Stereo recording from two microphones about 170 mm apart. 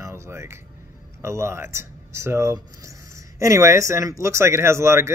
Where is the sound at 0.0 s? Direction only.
15° right (ahead or behind).